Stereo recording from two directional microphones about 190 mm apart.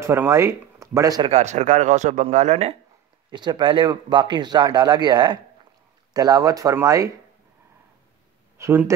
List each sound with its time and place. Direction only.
0.0 s speech: 15° right (ahead or behind)
1.3 s speech: 40° right (ahead or behind)
3.3 s speech: 20° right (ahead or behind)
8.5 s speech: 15° right (ahead or behind)